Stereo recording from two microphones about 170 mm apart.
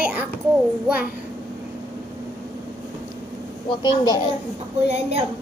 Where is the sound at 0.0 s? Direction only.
10° right (ahead or behind).